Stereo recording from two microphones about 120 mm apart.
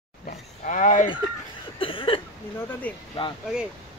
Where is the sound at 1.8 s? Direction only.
45° left (ahead or behind).